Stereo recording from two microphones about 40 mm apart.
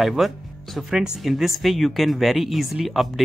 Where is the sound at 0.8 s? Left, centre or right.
Centre.